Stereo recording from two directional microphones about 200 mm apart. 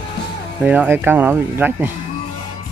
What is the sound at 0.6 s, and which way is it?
Speech, 10° right (ahead or behind).